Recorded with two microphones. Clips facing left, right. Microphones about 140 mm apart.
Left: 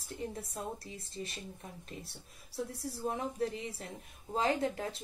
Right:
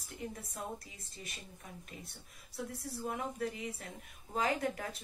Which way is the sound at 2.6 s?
30° left (ahead or behind).